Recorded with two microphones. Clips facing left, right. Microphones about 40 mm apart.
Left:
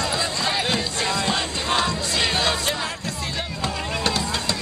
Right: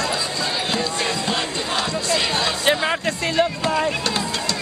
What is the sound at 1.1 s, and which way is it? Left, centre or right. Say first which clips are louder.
Music: even; centre.